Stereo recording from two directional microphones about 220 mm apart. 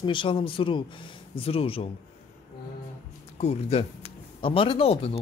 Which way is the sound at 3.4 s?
30° left (ahead or behind).